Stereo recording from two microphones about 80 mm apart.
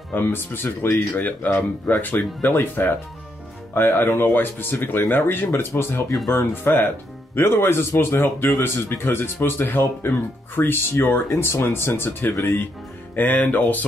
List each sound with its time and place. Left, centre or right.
0.1 s speech: left
13.1 s speech: left